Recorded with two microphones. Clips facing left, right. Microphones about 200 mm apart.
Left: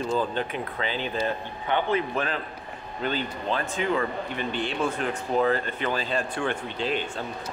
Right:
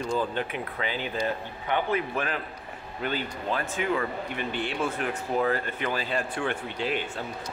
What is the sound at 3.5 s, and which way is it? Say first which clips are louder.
Speech: left 1 dB; 25° left (ahead or behind).